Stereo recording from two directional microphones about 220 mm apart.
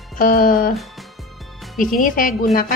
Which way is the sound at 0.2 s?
40° left (ahead or behind).